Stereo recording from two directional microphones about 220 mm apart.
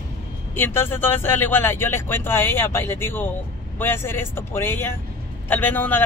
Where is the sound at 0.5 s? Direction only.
10° left (ahead or behind).